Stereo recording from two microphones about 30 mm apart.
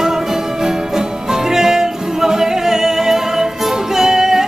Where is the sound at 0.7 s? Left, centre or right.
Centre.